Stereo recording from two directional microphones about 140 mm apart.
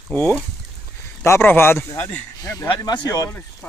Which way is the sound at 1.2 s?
20° left (ahead or behind).